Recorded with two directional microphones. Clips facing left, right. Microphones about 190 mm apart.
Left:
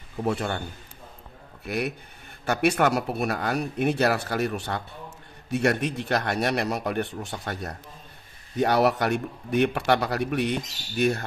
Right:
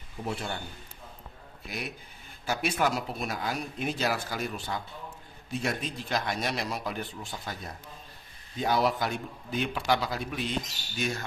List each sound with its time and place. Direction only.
0.2 s a man's voice: 65° left (ahead or behind)
1.7 s a man's voice: 60° left (ahead or behind)